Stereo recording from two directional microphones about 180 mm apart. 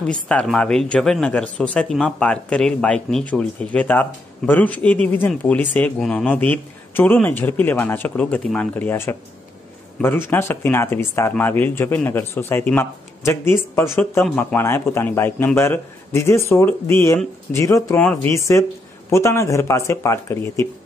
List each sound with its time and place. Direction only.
0.0 s speech: 5° left (ahead or behind)